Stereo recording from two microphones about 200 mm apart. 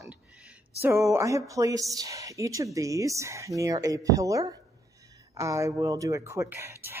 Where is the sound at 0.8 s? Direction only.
15° right (ahead or behind).